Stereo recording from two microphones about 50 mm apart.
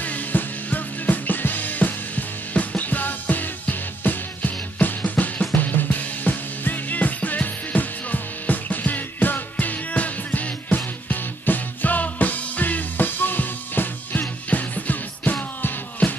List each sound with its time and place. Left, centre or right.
0.0 s music: left